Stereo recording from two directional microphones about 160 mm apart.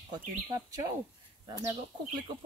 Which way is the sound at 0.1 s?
25° right (ahead or behind).